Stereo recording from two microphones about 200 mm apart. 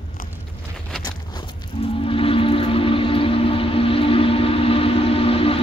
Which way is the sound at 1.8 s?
25° left (ahead or behind).